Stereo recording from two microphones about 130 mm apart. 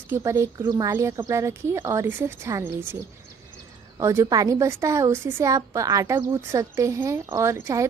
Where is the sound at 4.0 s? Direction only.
25° right (ahead or behind).